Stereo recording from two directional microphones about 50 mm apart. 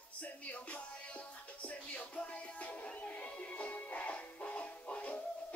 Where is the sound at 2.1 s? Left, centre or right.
Left.